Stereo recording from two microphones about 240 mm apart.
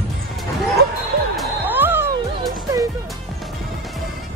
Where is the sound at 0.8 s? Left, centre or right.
Right.